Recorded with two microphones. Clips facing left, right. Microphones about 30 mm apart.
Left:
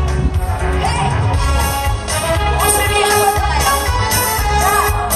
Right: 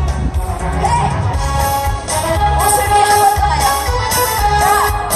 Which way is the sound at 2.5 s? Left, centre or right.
Left.